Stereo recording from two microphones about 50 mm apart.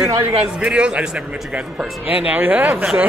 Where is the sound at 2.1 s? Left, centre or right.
Right; by 3.0 s centre.